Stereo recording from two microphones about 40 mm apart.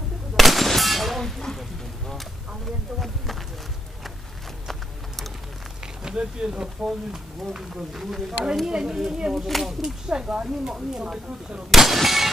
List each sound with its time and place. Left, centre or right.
0.4 s gunshot: centre
1.6 s speech: centre
4.6 s a sound: centre
6.0 s speech: right
8.6 s speech: centre
11.7 s speech: centre